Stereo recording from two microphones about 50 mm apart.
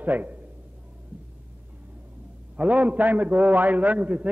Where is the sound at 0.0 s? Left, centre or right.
Right.